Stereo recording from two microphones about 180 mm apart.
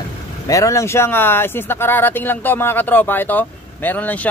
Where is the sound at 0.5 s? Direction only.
15° left (ahead or behind).